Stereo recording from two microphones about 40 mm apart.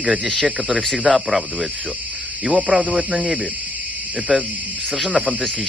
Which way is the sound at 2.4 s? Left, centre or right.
Right.